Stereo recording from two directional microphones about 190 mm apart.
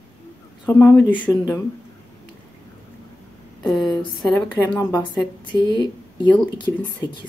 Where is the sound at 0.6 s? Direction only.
20° left (ahead or behind).